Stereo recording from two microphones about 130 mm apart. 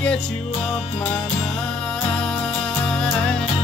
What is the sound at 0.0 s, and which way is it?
Music, 10° left (ahead or behind).